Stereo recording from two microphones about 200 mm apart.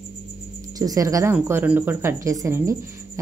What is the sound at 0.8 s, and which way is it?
A woman's voice, 15° right (ahead or behind).